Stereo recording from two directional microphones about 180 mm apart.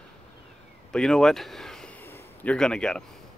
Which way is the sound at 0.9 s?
5° left (ahead or behind).